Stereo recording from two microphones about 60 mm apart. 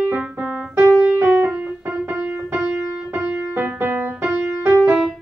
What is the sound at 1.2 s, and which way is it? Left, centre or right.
Music, right.